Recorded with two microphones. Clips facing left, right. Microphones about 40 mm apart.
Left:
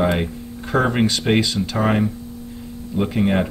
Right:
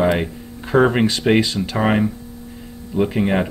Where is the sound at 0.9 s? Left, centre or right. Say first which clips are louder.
Right 2 dB; centre.